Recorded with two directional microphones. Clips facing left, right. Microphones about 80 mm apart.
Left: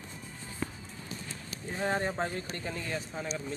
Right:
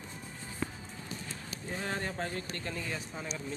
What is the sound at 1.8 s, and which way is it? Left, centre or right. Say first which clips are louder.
Speech: left 6 dB; left.